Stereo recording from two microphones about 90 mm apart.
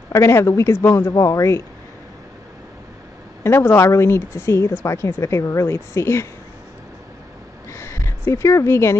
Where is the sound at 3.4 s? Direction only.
25° left (ahead or behind).